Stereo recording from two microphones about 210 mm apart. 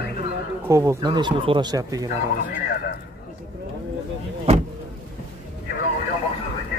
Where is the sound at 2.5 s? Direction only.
50° left (ahead or behind).